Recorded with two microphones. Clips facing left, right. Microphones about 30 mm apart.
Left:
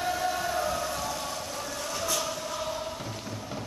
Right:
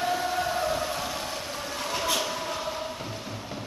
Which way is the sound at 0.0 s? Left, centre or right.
Right.